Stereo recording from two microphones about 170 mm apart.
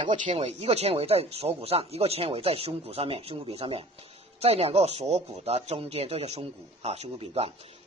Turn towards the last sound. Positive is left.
turn(degrees=-35)  # may be behind; listen again after turning